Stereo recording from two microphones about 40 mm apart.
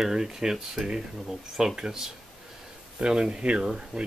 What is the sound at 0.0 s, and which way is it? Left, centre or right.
Speech, centre.